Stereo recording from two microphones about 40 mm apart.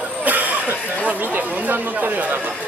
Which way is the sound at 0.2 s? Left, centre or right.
Right.